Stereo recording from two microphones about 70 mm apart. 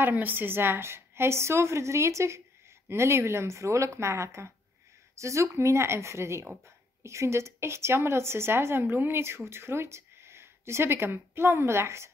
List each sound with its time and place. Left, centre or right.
0.0 s speech: right